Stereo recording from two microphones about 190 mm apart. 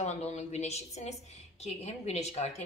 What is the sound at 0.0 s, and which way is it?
A woman's voice, 35° left (ahead or behind).